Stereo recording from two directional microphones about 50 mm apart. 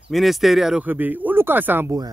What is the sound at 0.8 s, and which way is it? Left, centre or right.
Speech, right.